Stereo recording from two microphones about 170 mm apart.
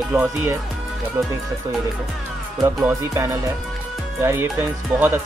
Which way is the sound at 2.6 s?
15° right (ahead or behind).